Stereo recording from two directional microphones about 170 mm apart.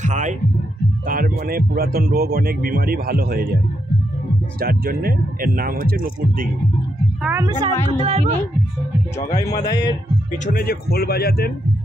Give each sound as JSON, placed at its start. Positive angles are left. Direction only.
{"t": 0.0, "sound": "speech", "side_deg": -45}
{"t": 1.0, "sound": "speech", "side_deg": -55}
{"t": 4.6, "sound": "speech", "side_deg": -60}
{"t": 7.2, "sound": "speech", "side_deg": -15}
{"t": 7.6, "sound": "speech", "side_deg": -35}
{"t": 9.7, "sound": "speech", "side_deg": 25}
{"t": 10.3, "sound": "speech", "side_deg": 50}